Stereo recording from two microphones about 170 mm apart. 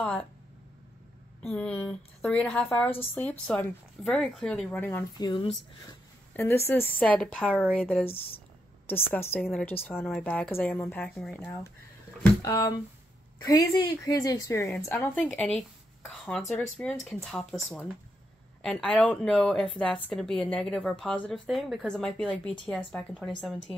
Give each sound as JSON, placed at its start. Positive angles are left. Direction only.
{"t": 1.4, "sound": "a woman's voice", "side_deg": 5}
{"t": 5.1, "sound": "speech", "side_deg": 25}
{"t": 6.3, "sound": "a woman's voice", "side_deg": 15}
{"t": 12.4, "sound": "a woman's voice", "side_deg": 20}